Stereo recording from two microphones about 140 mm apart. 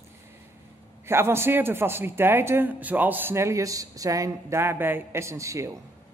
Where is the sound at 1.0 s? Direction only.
15° right (ahead or behind).